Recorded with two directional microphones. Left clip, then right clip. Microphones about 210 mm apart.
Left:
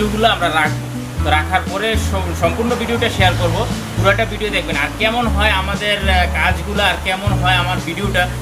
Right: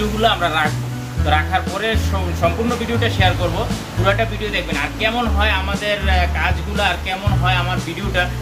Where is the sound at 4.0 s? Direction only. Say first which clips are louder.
Left 3 dB; 15° left (ahead or behind).